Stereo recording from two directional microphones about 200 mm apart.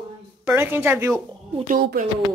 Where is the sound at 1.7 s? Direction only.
45° right (ahead or behind).